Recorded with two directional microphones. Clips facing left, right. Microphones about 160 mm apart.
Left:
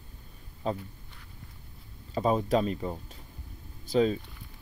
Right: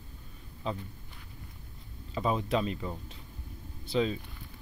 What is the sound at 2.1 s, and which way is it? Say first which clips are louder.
Speech: left 4 dB; 40° left (ahead or behind).